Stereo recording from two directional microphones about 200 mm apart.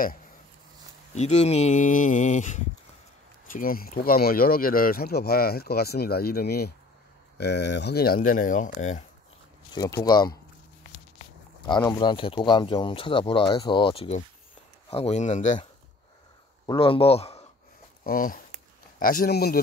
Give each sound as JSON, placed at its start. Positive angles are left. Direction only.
{"t": 1.1, "sound": "speech", "side_deg": 35}
{"t": 9.8, "sound": "speech", "side_deg": 15}
{"t": 16.6, "sound": "speech", "side_deg": 25}
{"t": 18.0, "sound": "speech", "side_deg": 45}